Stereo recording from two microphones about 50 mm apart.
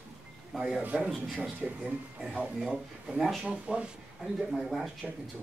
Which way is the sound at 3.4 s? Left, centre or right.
Centre.